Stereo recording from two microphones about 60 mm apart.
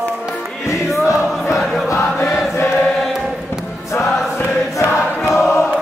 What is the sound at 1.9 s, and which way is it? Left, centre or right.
Chant, left.